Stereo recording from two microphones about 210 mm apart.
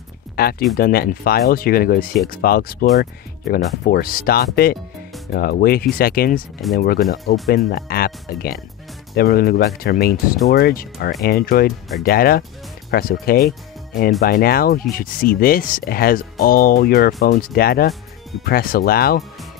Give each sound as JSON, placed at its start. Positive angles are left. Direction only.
{"t": 0.4, "sound": "speech", "side_deg": 45}
{"t": 7.4, "sound": "speech", "side_deg": 45}